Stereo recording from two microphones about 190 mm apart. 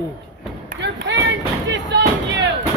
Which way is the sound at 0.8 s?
70° right (ahead or behind).